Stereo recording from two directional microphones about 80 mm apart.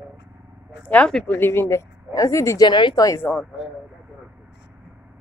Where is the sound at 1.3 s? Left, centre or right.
Left.